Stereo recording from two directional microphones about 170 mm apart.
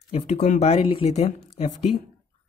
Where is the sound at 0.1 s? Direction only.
40° left (ahead or behind).